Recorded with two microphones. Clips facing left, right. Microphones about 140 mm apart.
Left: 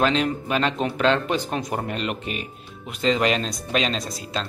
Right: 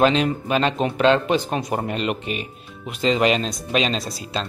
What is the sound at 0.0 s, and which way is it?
A man's voice, 5° right (ahead or behind).